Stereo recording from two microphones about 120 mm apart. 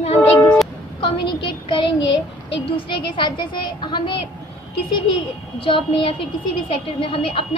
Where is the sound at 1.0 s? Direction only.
45° left (ahead or behind).